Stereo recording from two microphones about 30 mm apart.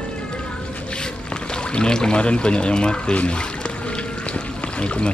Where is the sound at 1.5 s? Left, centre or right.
Left.